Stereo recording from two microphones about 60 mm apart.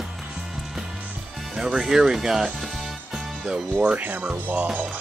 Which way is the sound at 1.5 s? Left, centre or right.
Centre.